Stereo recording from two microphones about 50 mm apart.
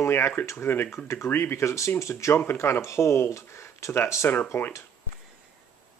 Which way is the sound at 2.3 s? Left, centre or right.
Left.